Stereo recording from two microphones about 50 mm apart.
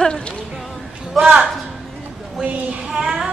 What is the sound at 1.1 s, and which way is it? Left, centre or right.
Speech, centre.